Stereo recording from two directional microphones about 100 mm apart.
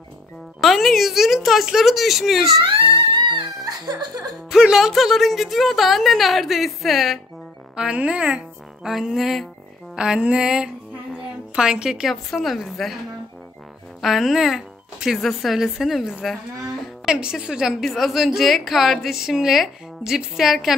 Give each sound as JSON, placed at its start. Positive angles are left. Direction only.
{"t": 0.6, "sound": "a woman's voice", "side_deg": 0}
{"t": 2.6, "sound": "music", "side_deg": -65}
{"t": 4.5, "sound": "a woman's voice", "side_deg": -5}
{"t": 9.9, "sound": "music", "side_deg": -10}
{"t": 12.3, "sound": "a woman's voice", "side_deg": 0}
{"t": 14.0, "sound": "a woman's voice", "side_deg": 0}